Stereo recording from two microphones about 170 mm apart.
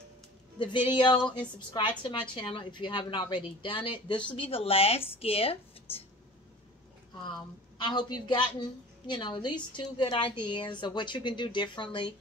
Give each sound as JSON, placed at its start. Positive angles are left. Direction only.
{"t": 0.6, "sound": "a woman's voice", "side_deg": 30}
{"t": 7.8, "sound": "a woman's voice", "side_deg": 25}